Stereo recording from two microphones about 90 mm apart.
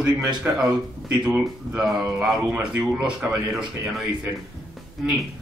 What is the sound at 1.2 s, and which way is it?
Speech, 15° right (ahead or behind).